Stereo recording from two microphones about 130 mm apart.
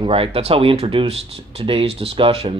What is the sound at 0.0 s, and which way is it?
A man's voice, 45° right (ahead or behind).